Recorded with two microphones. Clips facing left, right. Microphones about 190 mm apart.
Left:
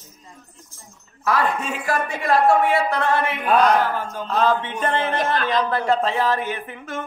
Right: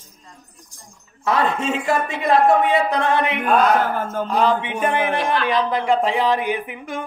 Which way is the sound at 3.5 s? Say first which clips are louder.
Even; centre (ahead or behind).